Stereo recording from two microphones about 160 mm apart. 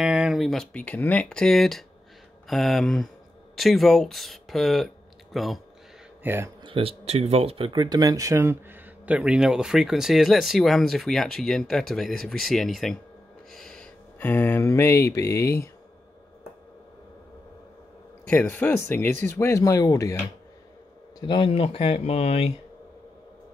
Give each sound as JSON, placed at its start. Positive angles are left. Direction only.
{"t": 0.0, "sound": "speech", "side_deg": -5}
{"t": 6.2, "sound": "speech", "side_deg": -15}
{"t": 6.6, "sound": "speech", "side_deg": -35}
{"t": 13.5, "sound": "mantra", "side_deg": 0}
{"t": 18.2, "sound": "speech", "side_deg": 10}